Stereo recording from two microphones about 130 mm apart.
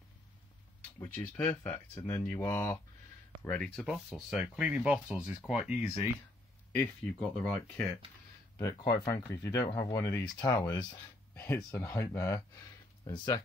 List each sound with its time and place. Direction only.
1.0 s speech: 15° left (ahead or behind)
3.4 s speech: 10° left (ahead or behind)
3.8 s speech: 5° right (ahead or behind)
6.8 s speech: 5° left (ahead or behind)
8.8 s speech: 25° left (ahead or behind)